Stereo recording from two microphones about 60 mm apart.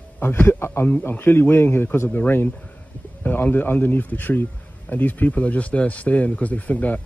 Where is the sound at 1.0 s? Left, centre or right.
Left.